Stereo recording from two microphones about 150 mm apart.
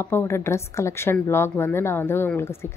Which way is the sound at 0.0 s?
15° left (ahead or behind).